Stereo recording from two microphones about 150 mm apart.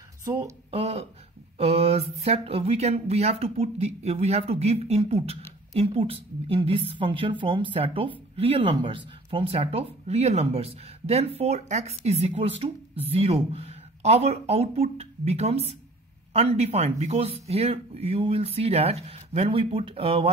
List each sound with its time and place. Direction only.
0.7 s speech: 40° right (ahead or behind)